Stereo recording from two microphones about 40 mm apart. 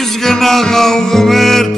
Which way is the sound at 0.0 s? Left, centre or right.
Centre.